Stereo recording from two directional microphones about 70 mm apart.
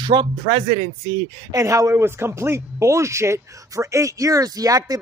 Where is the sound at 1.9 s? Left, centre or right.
Right.